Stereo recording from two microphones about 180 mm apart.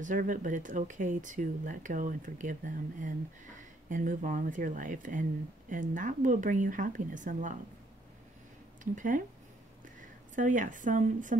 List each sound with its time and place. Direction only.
0.0 s speech: 45° right (ahead or behind)
8.9 s speech: 45° right (ahead or behind)
10.3 s speech: 45° right (ahead or behind)